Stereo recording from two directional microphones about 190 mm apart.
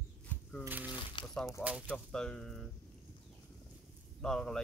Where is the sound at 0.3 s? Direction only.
5° left (ahead or behind).